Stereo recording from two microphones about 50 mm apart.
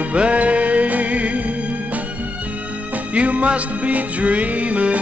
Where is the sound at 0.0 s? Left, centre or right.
Right.